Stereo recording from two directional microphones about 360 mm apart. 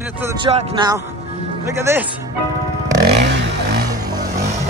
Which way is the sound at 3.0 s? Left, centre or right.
Right.